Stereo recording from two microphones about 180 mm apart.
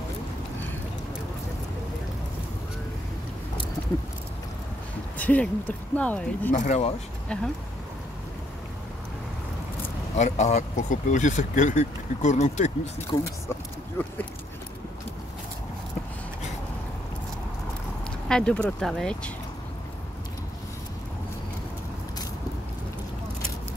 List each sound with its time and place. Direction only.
5.1 s speech: 10° left (ahead or behind)
6.5 s speech: 40° left (ahead or behind)
10.1 s speech: 40° left (ahead or behind)
13.1 s speech: 15° left (ahead or behind)
18.3 s speech: 5° left (ahead or behind)